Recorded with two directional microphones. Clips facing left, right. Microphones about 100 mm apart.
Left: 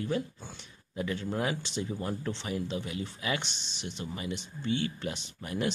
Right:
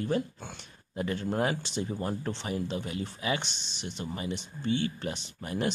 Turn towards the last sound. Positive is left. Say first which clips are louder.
# right 1 dB
turn(degrees=-35)  # may be behind; listen again after turning